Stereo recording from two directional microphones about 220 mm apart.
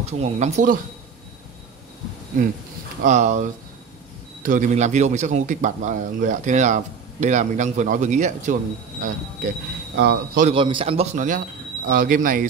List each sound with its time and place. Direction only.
0.0 s speech: 30° right (ahead or behind)
3.0 s speech: 35° right (ahead or behind)
9.9 s speech: 45° right (ahead or behind)
10.5 s speech: 25° right (ahead or behind); by 12.4 s 40° right (ahead or behind)